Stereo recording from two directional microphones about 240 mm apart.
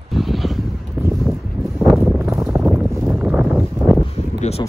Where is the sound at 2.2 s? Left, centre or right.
Centre.